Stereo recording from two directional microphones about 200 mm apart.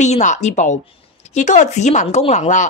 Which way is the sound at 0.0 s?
35° left (ahead or behind).